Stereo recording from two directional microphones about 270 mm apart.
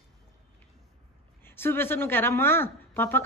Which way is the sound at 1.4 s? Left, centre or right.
Centre.